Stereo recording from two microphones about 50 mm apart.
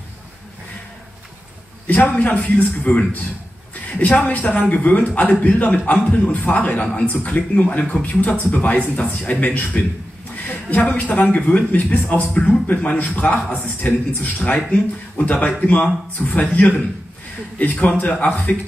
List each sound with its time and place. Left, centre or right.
2.0 s a man's voice: left